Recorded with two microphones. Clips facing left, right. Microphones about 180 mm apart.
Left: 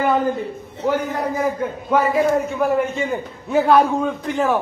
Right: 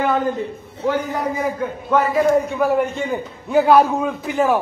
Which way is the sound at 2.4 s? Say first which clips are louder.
Right 1 dB; centre (ahead or behind).